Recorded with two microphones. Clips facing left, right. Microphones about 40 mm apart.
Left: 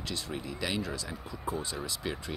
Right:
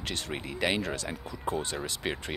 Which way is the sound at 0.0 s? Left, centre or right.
Right.